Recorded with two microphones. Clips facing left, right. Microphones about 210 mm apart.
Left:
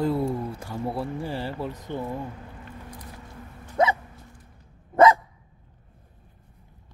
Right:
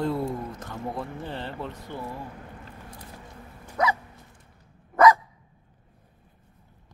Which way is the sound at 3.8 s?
25° left (ahead or behind).